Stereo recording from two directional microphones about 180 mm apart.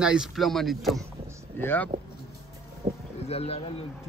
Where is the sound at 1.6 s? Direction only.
10° left (ahead or behind).